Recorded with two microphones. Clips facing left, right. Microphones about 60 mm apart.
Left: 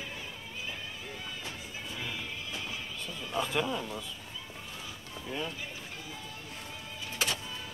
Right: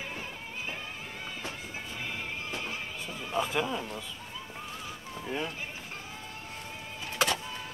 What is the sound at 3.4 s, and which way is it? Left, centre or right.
Speech, centre.